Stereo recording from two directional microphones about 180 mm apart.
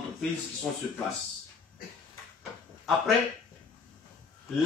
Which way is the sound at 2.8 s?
Centre (ahead or behind).